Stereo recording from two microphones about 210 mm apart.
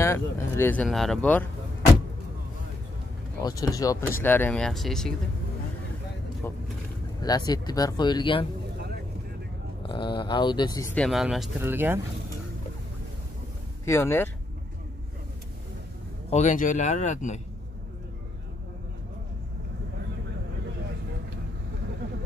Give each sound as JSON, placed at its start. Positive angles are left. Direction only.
{"t": 0.0, "sound": "speech", "side_deg": 10}
{"t": 3.4, "sound": "speech", "side_deg": 15}
{"t": 6.4, "sound": "speech", "side_deg": 10}
{"t": 9.8, "sound": "speech", "side_deg": 25}
{"t": 11.0, "sound": "speech", "side_deg": 0}
{"t": 13.8, "sound": "speech", "side_deg": 10}
{"t": 16.3, "sound": "speech", "side_deg": 35}